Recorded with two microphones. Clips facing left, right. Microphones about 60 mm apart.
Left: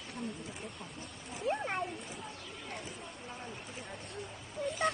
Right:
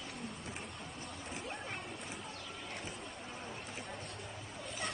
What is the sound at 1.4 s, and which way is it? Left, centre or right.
Speech, left.